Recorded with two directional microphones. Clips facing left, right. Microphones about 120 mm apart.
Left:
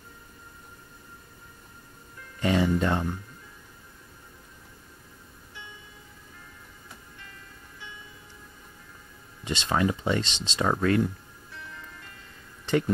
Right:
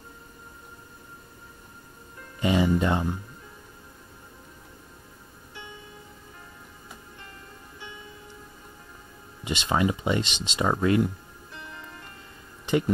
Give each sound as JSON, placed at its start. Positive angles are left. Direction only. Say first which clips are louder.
{"t": 2.4, "sound": "speech", "louder": "right 1 dB", "side_deg": -10}
{"t": 9.4, "sound": "speech", "louder": "right 1 dB", "side_deg": -10}
{"t": 11.5, "sound": "music", "louder": "right 2 dB", "side_deg": -20}
{"t": 12.6, "sound": "speech", "louder": "right 1 dB", "side_deg": -10}